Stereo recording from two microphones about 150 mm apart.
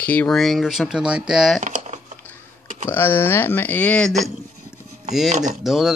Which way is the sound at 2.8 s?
15° left (ahead or behind).